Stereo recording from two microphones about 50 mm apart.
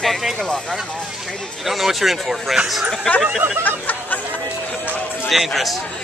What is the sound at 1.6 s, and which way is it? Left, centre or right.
Speech, centre.